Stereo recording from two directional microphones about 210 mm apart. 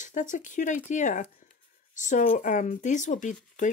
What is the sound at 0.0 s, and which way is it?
Speech, 35° left (ahead or behind).